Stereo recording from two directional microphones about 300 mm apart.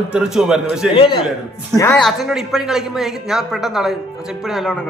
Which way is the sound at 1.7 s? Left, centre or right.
Centre.